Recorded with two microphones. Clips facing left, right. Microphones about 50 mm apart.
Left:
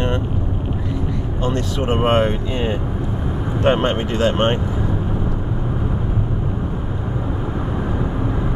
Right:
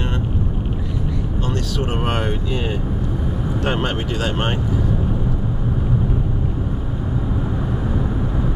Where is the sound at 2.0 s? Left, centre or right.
Left.